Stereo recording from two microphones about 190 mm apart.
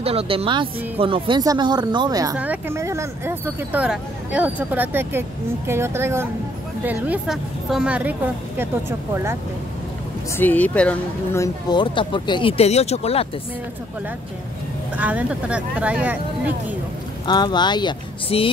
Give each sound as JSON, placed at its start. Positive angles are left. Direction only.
{"t": 0.0, "sound": "speech", "side_deg": -30}
{"t": 2.3, "sound": "speech", "side_deg": -5}
{"t": 10.3, "sound": "speech", "side_deg": 10}
{"t": 15.0, "sound": "speech", "side_deg": -10}
{"t": 17.3, "sound": "speech", "side_deg": 20}